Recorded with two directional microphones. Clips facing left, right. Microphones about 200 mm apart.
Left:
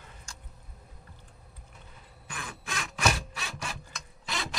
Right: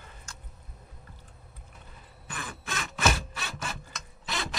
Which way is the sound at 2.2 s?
Centre (ahead or behind).